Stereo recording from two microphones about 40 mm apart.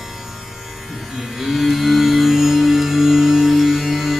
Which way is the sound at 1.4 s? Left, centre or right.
Centre.